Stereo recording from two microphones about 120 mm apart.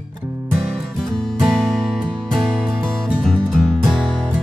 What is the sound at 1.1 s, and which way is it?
Music, 5° left (ahead or behind).